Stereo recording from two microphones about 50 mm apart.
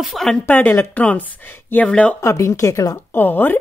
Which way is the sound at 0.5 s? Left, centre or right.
Left.